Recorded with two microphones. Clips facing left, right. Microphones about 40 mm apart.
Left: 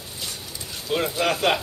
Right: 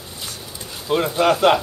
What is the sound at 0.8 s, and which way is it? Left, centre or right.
Speech, centre.